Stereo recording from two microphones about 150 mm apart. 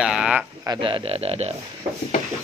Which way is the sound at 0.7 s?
35° right (ahead or behind).